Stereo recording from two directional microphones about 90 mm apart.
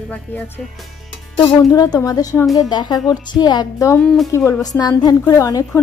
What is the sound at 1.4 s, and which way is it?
A woman's voice, 45° left (ahead or behind).